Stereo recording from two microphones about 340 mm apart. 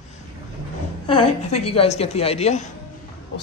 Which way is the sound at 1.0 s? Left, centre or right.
Centre.